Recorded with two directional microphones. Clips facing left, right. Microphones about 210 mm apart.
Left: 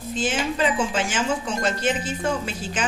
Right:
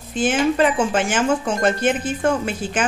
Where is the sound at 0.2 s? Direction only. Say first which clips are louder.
Right 7 dB; 55° right (ahead or behind).